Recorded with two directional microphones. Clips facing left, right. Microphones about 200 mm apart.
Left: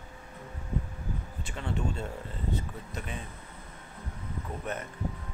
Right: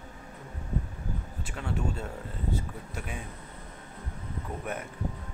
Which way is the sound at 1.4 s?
5° right (ahead or behind).